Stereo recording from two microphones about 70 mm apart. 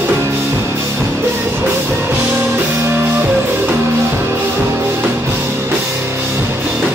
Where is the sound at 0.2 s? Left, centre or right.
Right.